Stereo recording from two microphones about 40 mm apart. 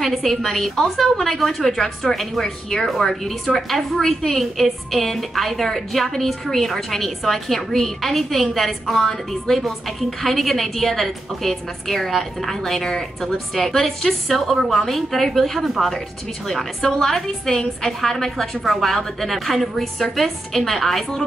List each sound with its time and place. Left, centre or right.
0.0 s a woman's voice: centre
16.8 s a woman's voice: centre